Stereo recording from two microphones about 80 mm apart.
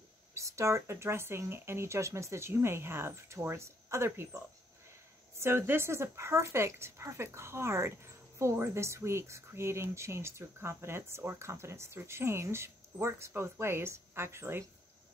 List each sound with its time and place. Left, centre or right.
0.3 s speech: right
5.4 s speech: right